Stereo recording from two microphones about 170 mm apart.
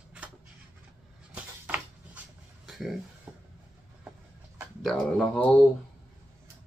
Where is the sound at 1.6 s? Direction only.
10° right (ahead or behind).